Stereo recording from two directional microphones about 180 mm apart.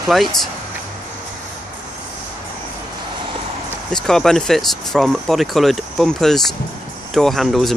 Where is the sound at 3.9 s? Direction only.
5° left (ahead or behind).